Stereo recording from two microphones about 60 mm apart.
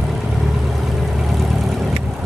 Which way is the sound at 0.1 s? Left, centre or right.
Centre.